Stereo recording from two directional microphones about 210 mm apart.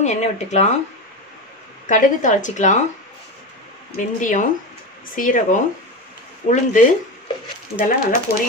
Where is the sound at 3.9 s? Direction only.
35° left (ahead or behind).